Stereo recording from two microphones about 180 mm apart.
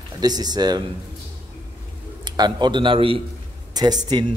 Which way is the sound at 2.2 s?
25° right (ahead or behind).